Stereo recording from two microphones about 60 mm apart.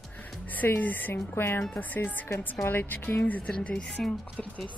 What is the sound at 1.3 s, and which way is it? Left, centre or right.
Speech, left.